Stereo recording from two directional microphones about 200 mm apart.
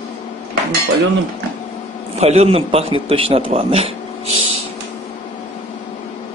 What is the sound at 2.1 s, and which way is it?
A man's voice, 30° right (ahead or behind).